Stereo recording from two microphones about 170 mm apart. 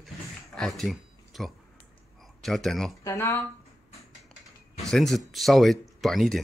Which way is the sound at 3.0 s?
15° left (ahead or behind).